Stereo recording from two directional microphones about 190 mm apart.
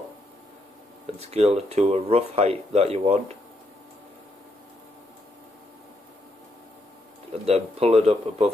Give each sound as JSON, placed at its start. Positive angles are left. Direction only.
{"t": 1.2, "sound": "speech", "side_deg": -35}
{"t": 7.4, "sound": "speech", "side_deg": -35}